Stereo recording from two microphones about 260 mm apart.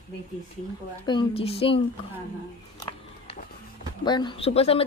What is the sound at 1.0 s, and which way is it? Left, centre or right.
Speech, centre.